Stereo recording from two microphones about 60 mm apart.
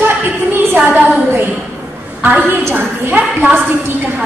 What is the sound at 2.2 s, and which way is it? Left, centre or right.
A woman's voice, right.